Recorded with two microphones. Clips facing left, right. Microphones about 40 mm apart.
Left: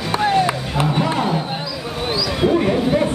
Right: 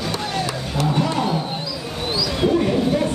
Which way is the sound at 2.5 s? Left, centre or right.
Left.